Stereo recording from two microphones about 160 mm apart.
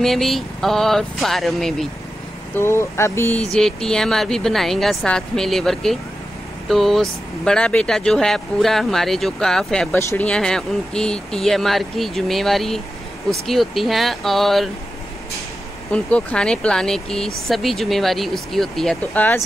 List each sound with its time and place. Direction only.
0.0 s speech: centre (ahead or behind)
2.5 s speech: 15° left (ahead or behind)
15.9 s speech: 5° left (ahead or behind)